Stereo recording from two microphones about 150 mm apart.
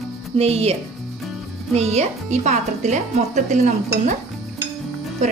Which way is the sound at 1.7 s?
45° right (ahead or behind).